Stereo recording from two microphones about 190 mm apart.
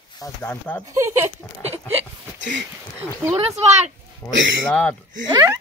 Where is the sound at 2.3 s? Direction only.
70° right (ahead or behind).